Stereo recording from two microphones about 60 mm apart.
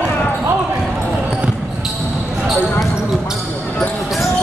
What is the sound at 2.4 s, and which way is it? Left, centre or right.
Speech, centre.